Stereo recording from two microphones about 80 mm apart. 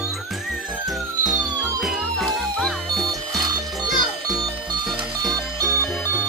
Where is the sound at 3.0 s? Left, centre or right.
Right.